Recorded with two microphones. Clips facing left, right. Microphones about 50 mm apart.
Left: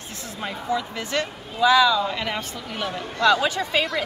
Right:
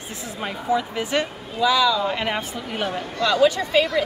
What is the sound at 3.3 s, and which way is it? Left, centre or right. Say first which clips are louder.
Speech: right 2 dB; left.